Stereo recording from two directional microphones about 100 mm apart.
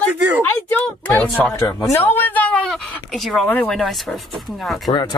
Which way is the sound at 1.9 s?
20° left (ahead or behind).